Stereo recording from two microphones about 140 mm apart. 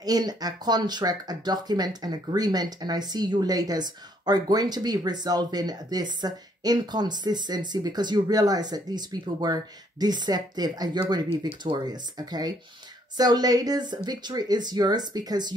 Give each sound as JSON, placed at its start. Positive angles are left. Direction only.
{"t": 0.0, "sound": "speech", "side_deg": -30}